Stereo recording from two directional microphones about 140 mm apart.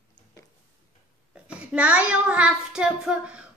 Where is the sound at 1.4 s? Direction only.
10° right (ahead or behind).